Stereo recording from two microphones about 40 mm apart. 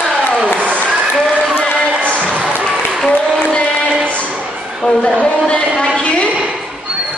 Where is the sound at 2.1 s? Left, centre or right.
Right.